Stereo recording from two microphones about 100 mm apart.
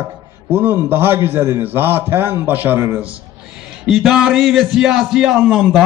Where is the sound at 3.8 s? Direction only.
Centre (ahead or behind).